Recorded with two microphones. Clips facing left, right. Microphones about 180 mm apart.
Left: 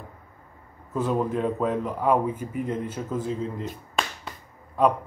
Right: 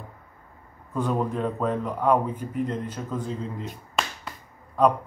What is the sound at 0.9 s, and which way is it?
A man's voice, 5° left (ahead or behind).